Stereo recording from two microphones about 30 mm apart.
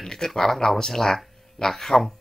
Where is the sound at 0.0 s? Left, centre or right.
Centre.